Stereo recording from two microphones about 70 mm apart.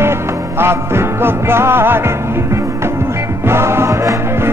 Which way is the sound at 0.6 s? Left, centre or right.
Right.